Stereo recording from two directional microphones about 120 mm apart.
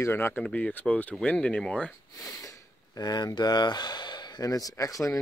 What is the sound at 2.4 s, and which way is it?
Speech, 30° left (ahead or behind).